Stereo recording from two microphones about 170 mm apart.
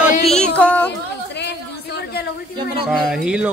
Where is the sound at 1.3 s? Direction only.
85° left.